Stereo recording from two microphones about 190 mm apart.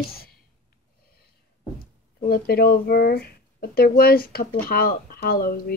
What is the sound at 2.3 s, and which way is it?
Speech, 55° left (ahead or behind).